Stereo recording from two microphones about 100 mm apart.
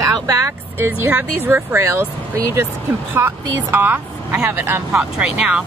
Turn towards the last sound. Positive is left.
turn(degrees=-10)  # may be behind; listen again after turning